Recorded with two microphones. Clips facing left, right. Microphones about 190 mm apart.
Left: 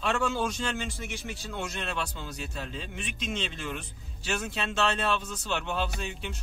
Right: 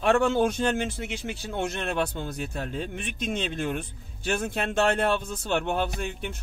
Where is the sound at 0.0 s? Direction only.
55° right (ahead or behind).